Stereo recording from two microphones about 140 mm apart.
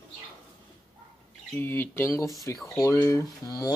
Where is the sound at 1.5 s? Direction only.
15° left (ahead or behind).